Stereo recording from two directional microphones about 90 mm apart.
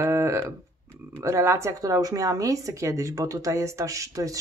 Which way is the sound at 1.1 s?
30° right (ahead or behind).